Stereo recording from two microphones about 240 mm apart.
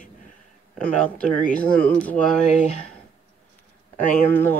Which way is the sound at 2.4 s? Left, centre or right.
Left.